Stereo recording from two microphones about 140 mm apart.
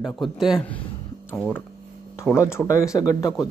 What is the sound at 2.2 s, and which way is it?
Speech, 20° left (ahead or behind).